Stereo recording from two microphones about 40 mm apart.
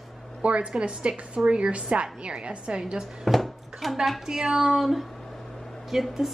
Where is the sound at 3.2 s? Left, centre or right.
Centre.